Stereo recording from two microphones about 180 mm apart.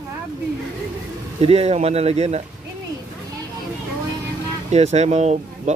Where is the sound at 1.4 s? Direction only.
35° right (ahead or behind).